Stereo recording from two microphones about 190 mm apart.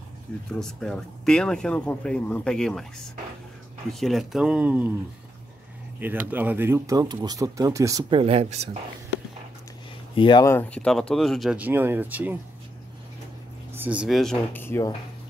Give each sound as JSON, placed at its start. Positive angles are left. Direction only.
{"t": 0.5, "sound": "speech", "side_deg": 5}
{"t": 5.9, "sound": "speech", "side_deg": -10}
{"t": 8.2, "sound": "speech", "side_deg": -30}
{"t": 10.1, "sound": "speech", "side_deg": 25}
{"t": 10.4, "sound": "speech", "side_deg": 10}
{"t": 13.7, "sound": "speech", "side_deg": -5}